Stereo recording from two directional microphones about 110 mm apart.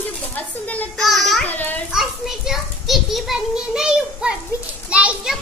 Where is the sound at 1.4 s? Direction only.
15° left (ahead or behind).